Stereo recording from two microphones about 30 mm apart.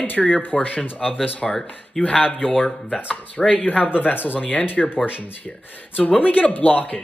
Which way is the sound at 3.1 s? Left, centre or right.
Left.